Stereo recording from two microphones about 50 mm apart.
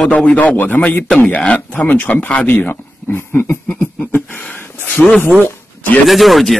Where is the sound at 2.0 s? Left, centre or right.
Left.